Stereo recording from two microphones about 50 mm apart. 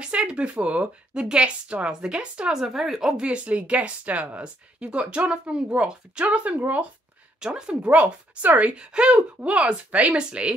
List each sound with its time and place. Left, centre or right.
0.0 s speech: centre
2.5 s speech: centre
3.2 s speech: right
7.3 s speech: centre
7.9 s speech: right